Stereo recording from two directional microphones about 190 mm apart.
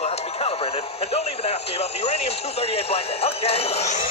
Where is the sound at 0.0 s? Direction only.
35° left (ahead or behind).